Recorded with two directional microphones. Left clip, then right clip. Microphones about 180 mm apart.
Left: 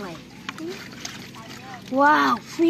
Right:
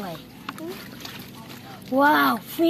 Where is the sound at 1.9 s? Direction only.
45° right (ahead or behind).